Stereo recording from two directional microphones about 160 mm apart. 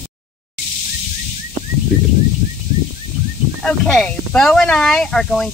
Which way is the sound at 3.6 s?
5° left (ahead or behind).